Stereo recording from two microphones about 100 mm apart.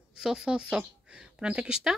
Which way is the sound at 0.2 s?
5° right (ahead or behind).